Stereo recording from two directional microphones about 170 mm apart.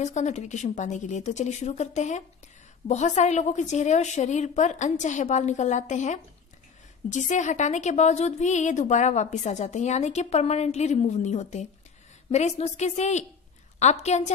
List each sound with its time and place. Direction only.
0.0 s a woman's voice: 45° left (ahead or behind)